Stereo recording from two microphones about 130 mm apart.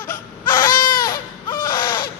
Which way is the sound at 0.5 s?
30° left (ahead or behind).